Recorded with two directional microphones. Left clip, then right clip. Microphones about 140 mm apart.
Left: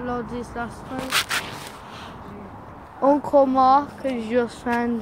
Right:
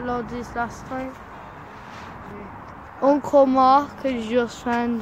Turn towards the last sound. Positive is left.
turn(degrees=-15)  # may be behind; listen again after turning